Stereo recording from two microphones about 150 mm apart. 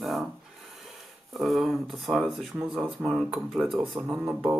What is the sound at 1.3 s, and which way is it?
Speech, centre (ahead or behind).